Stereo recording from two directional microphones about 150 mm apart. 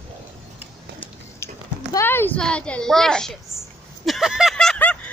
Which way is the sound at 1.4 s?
15° left (ahead or behind).